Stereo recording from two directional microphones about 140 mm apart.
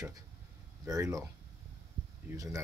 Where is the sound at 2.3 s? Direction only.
25° right (ahead or behind).